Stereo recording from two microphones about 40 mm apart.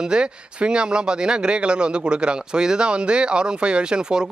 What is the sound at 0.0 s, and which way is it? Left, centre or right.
A man's voice, centre.